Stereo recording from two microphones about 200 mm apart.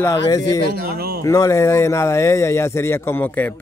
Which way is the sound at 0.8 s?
50° right (ahead or behind).